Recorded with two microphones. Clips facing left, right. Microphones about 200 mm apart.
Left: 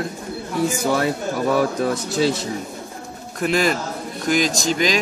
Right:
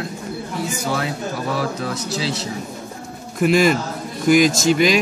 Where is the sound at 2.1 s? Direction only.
50° left (ahead or behind).